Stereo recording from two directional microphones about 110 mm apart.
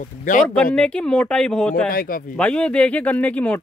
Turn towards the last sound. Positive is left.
turn(degrees=15)  # may be behind; listen again after turning